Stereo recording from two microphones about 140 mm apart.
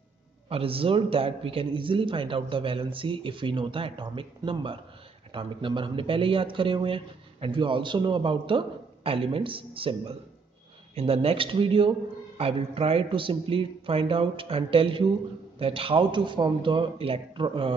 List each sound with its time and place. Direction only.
0.5 s a man's voice: 40° right (ahead or behind)